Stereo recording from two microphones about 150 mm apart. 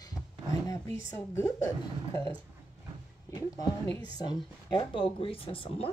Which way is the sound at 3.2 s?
25° left (ahead or behind).